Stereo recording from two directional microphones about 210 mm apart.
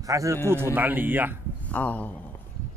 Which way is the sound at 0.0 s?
15° right (ahead or behind).